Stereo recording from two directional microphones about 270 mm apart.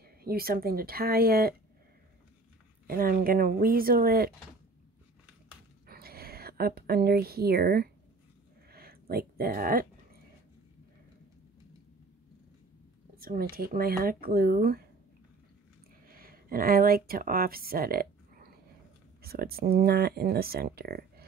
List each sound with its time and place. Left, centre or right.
0.0 s speech: right
2.9 s speech: right
5.9 s speech: right
8.7 s a sound: right
13.2 s speech: right
16.1 s speech: right